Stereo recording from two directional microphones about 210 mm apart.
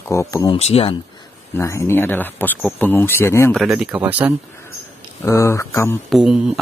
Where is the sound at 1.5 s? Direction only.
10° left (ahead or behind).